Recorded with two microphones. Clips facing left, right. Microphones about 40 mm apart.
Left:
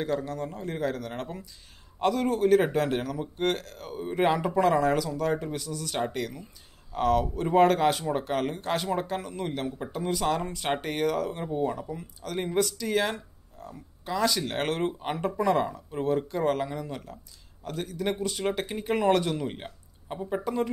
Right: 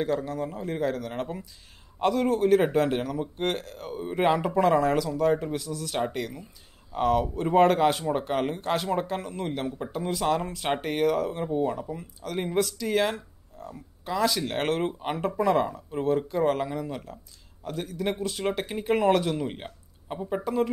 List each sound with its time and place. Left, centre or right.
0.0 s a man's voice: centre